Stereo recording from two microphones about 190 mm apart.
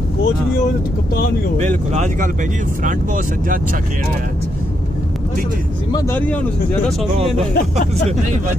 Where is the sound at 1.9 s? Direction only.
40° right (ahead or behind).